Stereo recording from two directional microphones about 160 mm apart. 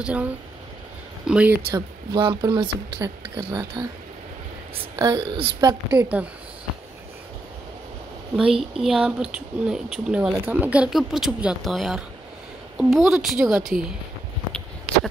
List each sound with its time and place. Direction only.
0.0 s speech: 10° right (ahead or behind)
1.7 s speech: 30° right (ahead or behind)
4.9 s a woman's voice: 30° right (ahead or behind)
5.9 s speech: 10° right (ahead or behind)
8.4 s speech: centre (ahead or behind)